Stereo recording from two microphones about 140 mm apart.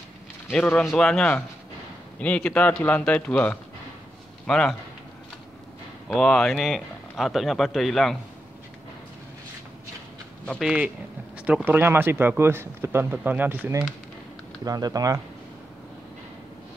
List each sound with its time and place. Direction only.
0.5 s a man's voice: 10° left (ahead or behind)
6.0 s speech: 5° left (ahead or behind)
10.6 s speech: 5° right (ahead or behind)
14.6 s speech: 25° right (ahead or behind)